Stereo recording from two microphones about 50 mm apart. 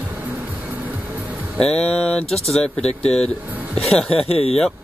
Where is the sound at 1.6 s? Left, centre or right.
Left.